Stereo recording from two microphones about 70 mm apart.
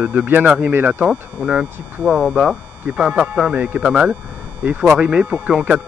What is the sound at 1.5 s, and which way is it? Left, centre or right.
Speech, centre.